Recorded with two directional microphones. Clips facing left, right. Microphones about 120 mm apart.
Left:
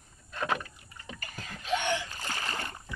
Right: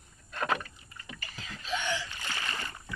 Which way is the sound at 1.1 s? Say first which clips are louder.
Left 1 dB; 45° left (ahead or behind).